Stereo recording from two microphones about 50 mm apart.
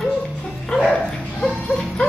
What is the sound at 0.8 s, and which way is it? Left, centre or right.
Dog, centre.